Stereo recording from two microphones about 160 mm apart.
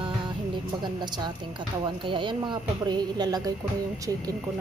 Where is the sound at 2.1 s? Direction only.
30° right (ahead or behind).